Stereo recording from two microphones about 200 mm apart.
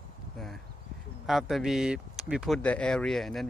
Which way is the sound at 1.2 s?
Centre (ahead or behind).